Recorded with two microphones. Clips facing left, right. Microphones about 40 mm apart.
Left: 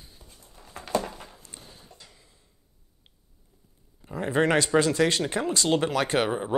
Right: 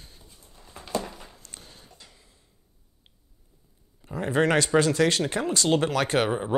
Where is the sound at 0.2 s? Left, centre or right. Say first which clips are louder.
Left 1 dB; centre.